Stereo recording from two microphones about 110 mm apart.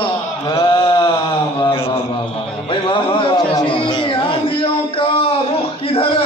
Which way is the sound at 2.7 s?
50° left (ahead or behind).